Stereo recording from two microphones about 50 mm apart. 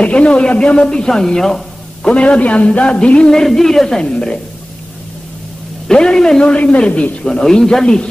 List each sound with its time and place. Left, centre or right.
0.0 s a man's voice: left
2.0 s a man's voice: left
3.3 s a man's voice: centre
5.9 s a man's voice: centre
6.4 s a man's voice: left
7.2 s speech: centre